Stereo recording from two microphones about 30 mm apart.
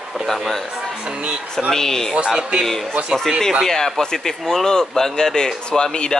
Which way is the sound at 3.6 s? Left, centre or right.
Centre.